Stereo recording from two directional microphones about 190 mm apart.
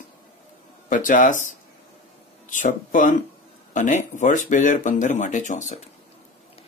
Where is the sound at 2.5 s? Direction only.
45° left (ahead or behind).